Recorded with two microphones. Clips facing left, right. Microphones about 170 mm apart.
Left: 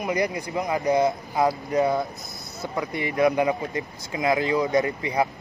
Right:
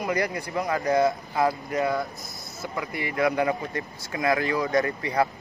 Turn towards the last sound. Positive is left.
turn(degrees=20)  # may be behind; listen again after turning